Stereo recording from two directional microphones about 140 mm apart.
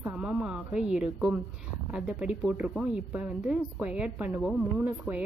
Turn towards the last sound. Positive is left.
turn(degrees=-15)  # may be behind; listen again after turning